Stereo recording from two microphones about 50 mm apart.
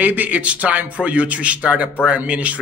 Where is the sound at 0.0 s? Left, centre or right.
Right.